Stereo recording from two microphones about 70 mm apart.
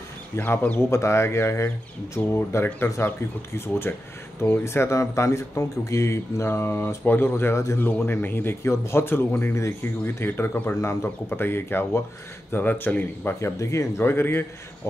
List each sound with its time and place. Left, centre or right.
0.4 s speech: left
0.7 s speech: left
10.8 s speech: left
13.4 s speech: left
14.0 s speech: left